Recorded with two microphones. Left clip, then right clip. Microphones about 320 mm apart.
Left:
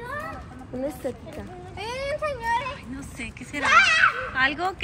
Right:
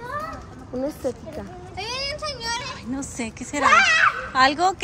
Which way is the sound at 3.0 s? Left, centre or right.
Centre.